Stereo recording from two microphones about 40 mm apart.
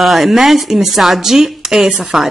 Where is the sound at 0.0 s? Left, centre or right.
Centre.